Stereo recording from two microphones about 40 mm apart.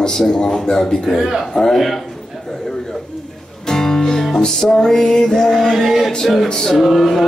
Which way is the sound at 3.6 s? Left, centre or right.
Centre.